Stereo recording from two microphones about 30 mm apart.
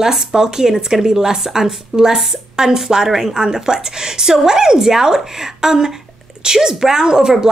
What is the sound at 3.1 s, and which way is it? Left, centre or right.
Speech, centre.